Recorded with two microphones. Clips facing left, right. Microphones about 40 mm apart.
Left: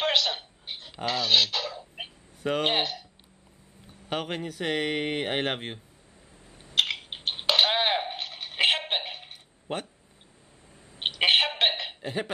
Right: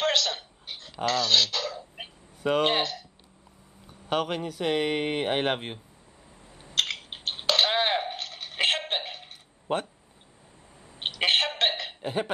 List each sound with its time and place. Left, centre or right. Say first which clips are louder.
0.0 s chicken: even; centre
2.4 s speech: right 3 dB; centre
2.7 s speech: right 1 dB; centre
4.1 s speech: right 4 dB; centre
6.7 s a sound: left 2 dB; centre
11.0 s a sound: left 2 dB; centre
12.0 s speech: right 5 dB; centre